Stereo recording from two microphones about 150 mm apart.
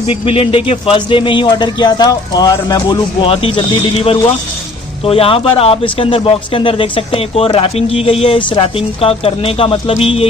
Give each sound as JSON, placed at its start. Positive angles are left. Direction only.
{"t": 0.2, "sound": "a man's voice", "side_deg": 40}